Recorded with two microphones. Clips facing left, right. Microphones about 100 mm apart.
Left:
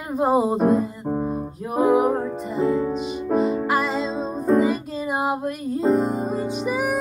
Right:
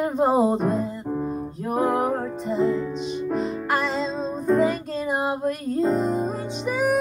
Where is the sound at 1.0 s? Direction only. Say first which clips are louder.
Left 2 dB; 30° left (ahead or behind).